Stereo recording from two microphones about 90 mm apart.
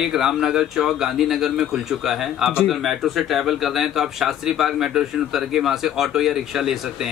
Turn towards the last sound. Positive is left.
turn(degrees=-5)  # may be behind; listen again after turning